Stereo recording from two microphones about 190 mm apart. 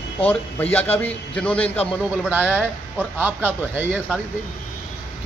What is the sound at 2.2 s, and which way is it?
A man's voice, 10° right (ahead or behind).